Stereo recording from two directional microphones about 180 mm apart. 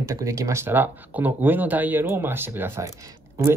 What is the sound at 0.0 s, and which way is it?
Speech, 15° right (ahead or behind).